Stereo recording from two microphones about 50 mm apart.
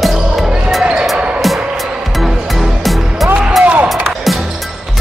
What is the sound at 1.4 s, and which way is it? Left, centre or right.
Music, centre.